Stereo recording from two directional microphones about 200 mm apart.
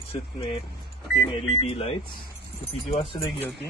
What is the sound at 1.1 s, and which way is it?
Speech, 30° left (ahead or behind).